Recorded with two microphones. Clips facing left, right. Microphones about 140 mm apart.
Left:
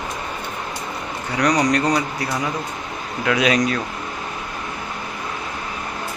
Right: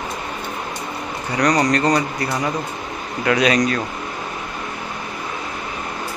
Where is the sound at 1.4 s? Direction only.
10° left (ahead or behind).